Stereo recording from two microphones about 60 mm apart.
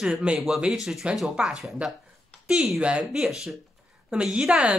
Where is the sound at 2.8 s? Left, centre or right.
Right.